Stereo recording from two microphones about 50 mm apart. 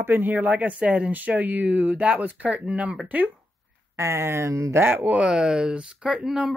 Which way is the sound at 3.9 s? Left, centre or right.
Right.